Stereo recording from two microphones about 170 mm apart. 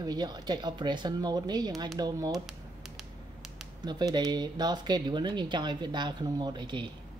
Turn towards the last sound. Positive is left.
turn(degrees=-25)  # may be behind; listen again after turning